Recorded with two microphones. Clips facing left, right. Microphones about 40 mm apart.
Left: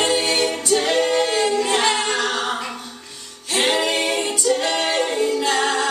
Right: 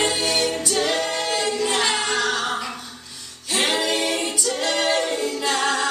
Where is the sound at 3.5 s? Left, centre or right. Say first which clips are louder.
Left 2 dB; centre.